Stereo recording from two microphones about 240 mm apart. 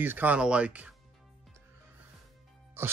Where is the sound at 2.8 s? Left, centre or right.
Centre.